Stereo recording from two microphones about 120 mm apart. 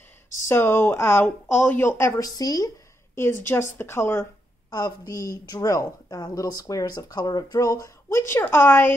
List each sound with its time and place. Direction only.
0.5 s a woman's voice: 20° left (ahead or behind)
4.6 s a woman's voice: 35° left (ahead or behind)